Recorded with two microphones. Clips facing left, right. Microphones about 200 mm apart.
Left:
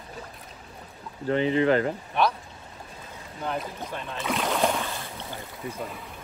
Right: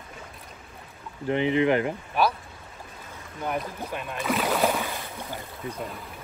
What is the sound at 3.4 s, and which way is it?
Speech, 10° right (ahead or behind).